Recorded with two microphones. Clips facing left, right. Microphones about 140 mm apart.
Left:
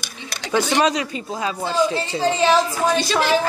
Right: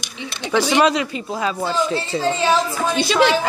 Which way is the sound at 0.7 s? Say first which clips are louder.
Right 4 dB; 40° left (ahead or behind).